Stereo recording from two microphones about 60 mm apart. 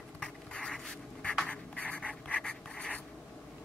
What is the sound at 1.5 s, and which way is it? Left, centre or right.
Writing, centre.